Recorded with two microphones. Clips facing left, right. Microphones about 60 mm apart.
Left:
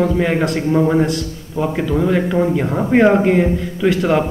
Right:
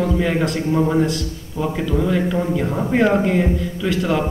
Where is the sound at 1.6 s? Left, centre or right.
Centre.